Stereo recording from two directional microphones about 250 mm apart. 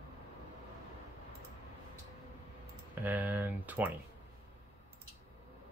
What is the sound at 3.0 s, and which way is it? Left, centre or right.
Speech, centre.